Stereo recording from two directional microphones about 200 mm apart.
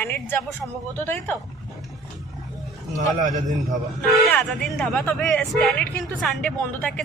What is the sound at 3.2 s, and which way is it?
Speech, 40° right (ahead or behind).